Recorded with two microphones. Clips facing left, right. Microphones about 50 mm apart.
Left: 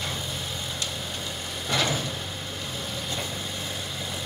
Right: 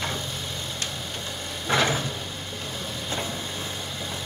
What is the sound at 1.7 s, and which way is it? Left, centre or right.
Vehicle, right.